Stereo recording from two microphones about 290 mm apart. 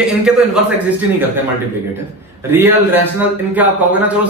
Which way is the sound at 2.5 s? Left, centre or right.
Centre.